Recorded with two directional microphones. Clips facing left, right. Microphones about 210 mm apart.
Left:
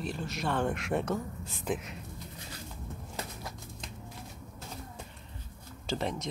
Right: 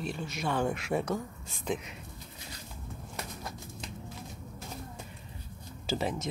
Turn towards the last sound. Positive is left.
turn(degrees=-5)  # may be behind; listen again after turning